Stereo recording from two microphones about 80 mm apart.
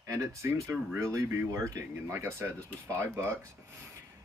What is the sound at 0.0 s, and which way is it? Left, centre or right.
Speech, right.